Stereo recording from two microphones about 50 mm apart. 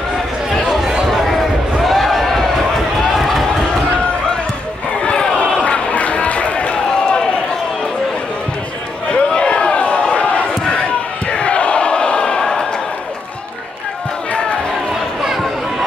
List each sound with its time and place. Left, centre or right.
0.7 s a sound: centre
3.2 s run: centre
5.0 s crowd: centre
5.6 s run: left
9.1 s a sound: centre
11.2 s crowd: centre